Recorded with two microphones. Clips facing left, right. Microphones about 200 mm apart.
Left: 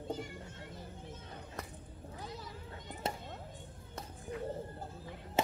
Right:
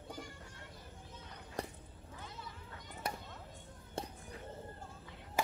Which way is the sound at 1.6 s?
30° right (ahead or behind).